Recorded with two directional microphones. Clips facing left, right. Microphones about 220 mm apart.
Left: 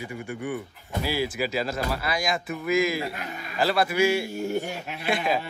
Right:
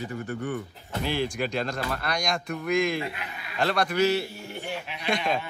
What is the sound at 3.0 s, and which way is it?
Speech, 45° left (ahead or behind).